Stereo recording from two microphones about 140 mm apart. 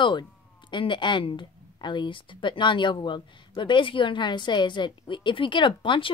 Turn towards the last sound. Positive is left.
turn(degrees=35)  # may be behind; listen again after turning